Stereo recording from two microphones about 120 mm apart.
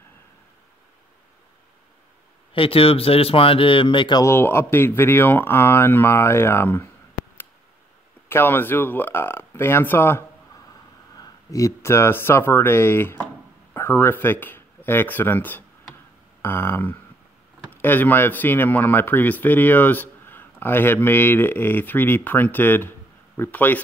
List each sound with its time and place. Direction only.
2.5 s speech: 50° left (ahead or behind)
4.2 s speech: 20° left (ahead or behind)
8.3 s speech: 20° left (ahead or behind)